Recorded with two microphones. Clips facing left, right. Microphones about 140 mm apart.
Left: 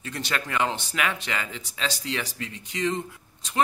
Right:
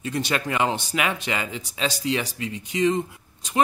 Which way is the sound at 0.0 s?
15° right (ahead or behind).